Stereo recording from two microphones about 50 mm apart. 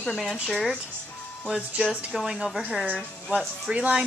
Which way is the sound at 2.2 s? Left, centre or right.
Centre.